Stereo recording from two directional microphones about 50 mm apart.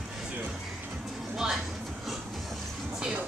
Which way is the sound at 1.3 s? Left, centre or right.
Centre.